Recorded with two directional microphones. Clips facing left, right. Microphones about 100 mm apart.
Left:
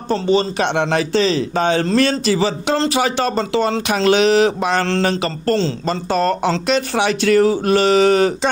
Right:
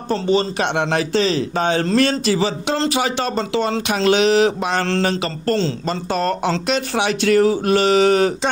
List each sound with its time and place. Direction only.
0.1 s speech: 25° left (ahead or behind)